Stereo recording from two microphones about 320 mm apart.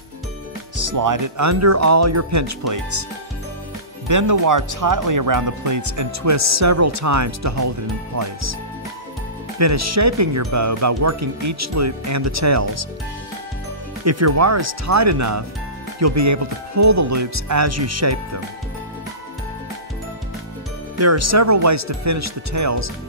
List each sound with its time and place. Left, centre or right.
0.7 s speech: right
4.1 s speech: right
9.6 s speech: right
14.0 s speech: right
21.0 s speech: right